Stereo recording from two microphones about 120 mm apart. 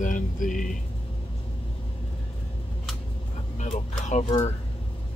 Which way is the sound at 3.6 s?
75° left (ahead or behind).